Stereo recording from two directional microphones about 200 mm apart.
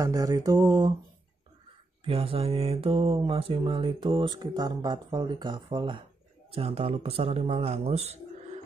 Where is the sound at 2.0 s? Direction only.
25° right (ahead or behind).